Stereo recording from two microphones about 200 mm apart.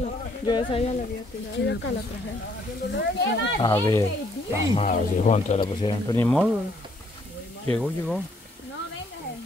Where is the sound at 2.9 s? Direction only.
60° left (ahead or behind).